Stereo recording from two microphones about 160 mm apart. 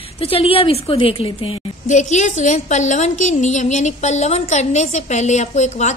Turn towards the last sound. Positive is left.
turn(degrees=45)  # may be behind; listen again after turning